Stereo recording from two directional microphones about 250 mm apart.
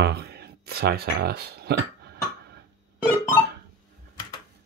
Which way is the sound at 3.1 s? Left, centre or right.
Centre.